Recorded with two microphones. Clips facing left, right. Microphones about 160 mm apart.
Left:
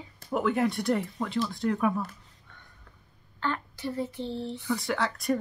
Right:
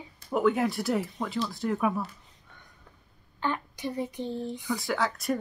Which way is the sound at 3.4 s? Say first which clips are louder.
Right 1 dB; 15° right (ahead or behind).